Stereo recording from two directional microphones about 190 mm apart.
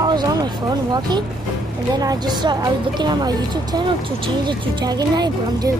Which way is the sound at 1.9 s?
20° right (ahead or behind).